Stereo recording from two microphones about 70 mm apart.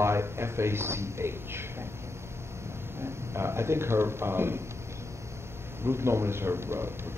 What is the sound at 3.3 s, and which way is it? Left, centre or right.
A man's voice, right.